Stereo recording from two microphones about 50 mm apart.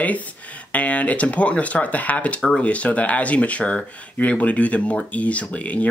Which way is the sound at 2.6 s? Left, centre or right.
Left.